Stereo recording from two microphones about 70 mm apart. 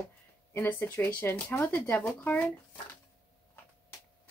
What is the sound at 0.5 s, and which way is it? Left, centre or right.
Speech, left.